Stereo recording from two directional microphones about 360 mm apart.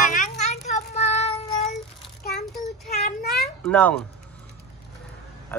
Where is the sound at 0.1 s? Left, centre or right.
Centre.